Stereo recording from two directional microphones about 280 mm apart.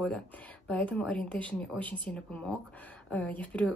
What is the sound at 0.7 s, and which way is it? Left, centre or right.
A woman's voice, centre.